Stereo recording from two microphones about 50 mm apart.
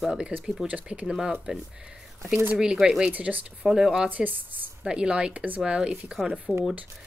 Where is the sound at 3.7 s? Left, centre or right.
Centre.